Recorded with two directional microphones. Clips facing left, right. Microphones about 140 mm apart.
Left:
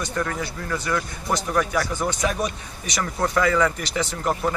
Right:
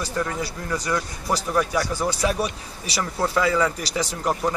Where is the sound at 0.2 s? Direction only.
15° right (ahead or behind).